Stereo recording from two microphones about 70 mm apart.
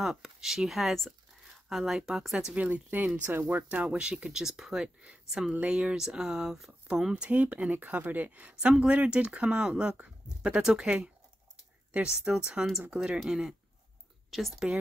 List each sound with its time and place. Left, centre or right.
0.0 s speech: centre
2.5 s speech: right
5.5 s speech: centre
7.2 s speech: right
12.2 s speech: centre